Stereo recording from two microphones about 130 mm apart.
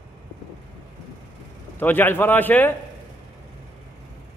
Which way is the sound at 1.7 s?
15° left (ahead or behind).